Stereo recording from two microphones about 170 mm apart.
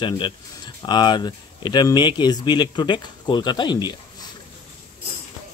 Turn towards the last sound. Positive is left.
turn(degrees=25)  # may be behind; listen again after turning